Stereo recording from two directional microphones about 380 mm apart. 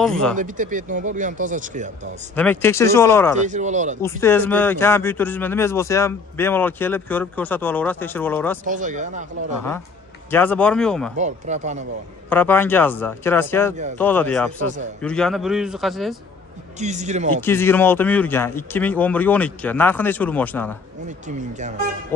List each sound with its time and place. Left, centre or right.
0.0 s speech: centre
0.4 s speech: centre
2.3 s speech: centre
3.3 s speech: centre
4.0 s speech: centre
8.6 s speech: centre
10.3 s speech: centre
11.1 s speech: centre
12.3 s speech: centre
16.8 s speech: centre
17.4 s speech: centre
21.3 s speech: centre